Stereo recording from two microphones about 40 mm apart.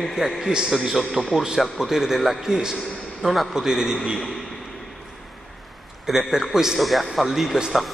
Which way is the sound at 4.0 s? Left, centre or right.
Centre.